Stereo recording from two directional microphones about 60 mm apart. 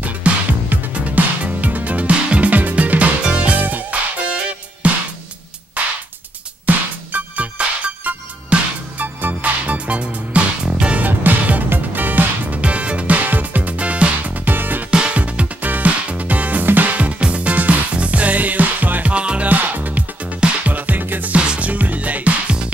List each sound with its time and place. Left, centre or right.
0.0 s music: right
14.9 s music: centre